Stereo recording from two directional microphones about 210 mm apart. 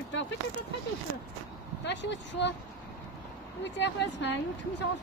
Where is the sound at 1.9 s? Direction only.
55° left (ahead or behind).